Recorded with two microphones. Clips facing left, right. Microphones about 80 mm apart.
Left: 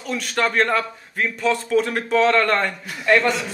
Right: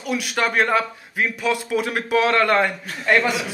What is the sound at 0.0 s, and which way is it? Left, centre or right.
A man's voice, centre.